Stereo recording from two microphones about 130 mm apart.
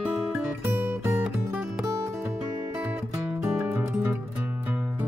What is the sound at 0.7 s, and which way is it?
Music, 15° right (ahead or behind).